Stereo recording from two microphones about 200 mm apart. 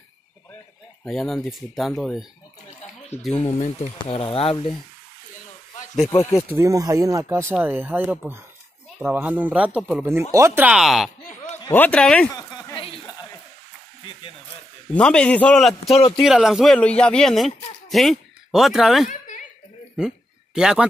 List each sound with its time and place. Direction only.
1.0 s speech: centre (ahead or behind)
3.3 s speech: 30° left (ahead or behind)
6.0 s speech: 15° left (ahead or behind)
6.5 s speech: 15° right (ahead or behind); by 12.3 s 5° left (ahead or behind)
12.3 s a sound: 20° left (ahead or behind)
14.9 s speech: 5° left (ahead or behind)
19.0 s a sound: 40° left (ahead or behind)
20.5 s speech: 5° right (ahead or behind)